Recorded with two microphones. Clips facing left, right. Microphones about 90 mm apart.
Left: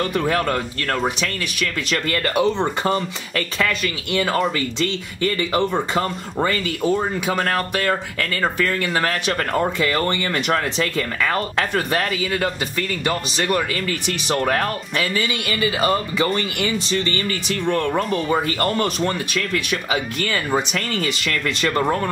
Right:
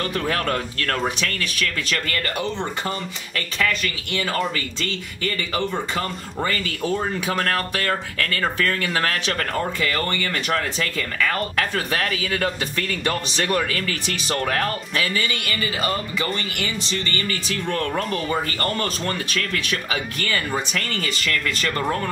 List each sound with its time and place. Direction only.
0.0 s speech: 15° left (ahead or behind)
2.4 s speech: 40° left (ahead or behind)
6.8 s speech: 15° left (ahead or behind)
12.7 s speech: 10° left (ahead or behind)
14.4 s speech: 30° left (ahead or behind)
15.8 s speech: 35° left (ahead or behind)
17.3 s speech: 20° left (ahead or behind)